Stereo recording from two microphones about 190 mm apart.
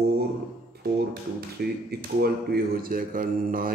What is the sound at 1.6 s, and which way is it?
Speech, 55° right (ahead or behind).